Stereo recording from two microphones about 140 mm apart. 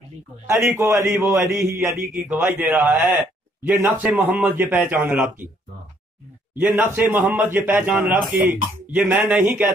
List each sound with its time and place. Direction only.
0.6 s a man's voice: 20° right (ahead or behind)
2.1 s a man's voice: 10° right (ahead or behind)
6.5 s a man's voice: 15° right (ahead or behind)